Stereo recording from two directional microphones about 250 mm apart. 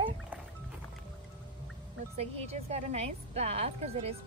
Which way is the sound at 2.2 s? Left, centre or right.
Right.